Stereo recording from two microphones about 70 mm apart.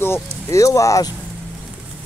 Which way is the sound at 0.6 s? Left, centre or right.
Left.